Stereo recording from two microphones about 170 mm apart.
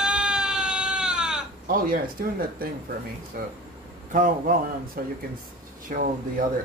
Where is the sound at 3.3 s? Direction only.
55° right (ahead or behind).